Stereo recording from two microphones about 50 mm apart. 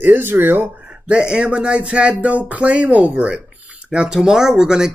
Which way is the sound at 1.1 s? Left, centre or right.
Centre.